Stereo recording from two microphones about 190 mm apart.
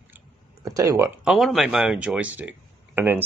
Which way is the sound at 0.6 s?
15° right (ahead or behind).